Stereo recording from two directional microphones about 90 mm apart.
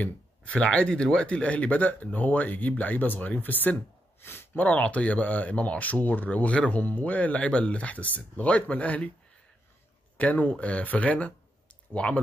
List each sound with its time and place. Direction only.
0.0 s speech: 15° left (ahead or behind)
10.1 s speech: 15° left (ahead or behind)